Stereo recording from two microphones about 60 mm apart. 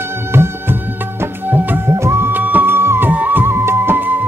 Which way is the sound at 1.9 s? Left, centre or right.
Right.